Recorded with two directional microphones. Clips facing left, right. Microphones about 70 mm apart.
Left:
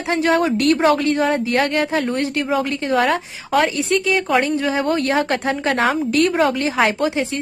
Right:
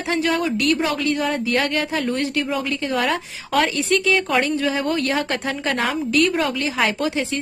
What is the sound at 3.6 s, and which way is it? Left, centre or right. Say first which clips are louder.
A woman's voice: left 1 dB; left.